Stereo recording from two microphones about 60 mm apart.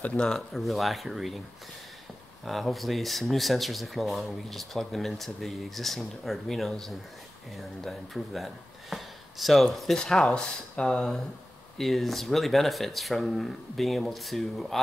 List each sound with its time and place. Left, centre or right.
0.0 s speech: centre
2.4 s speech: centre
8.9 s a sound: centre
9.9 s speech: centre